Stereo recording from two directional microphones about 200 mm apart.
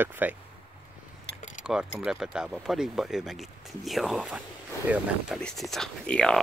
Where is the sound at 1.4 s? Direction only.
40° left (ahead or behind).